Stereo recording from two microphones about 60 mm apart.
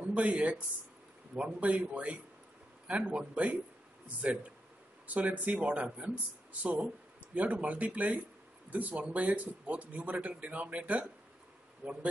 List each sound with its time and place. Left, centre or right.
0.1 s a man's voice: centre
4.2 s speech: right